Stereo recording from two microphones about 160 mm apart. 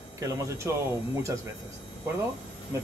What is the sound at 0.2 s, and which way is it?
Speech, 20° right (ahead or behind).